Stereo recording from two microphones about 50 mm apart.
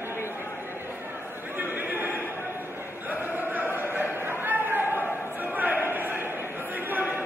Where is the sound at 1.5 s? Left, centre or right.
Right.